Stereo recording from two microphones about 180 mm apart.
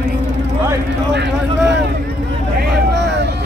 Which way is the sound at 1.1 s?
70° right (ahead or behind).